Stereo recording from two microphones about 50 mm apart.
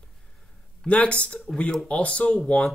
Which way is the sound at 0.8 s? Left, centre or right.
Left.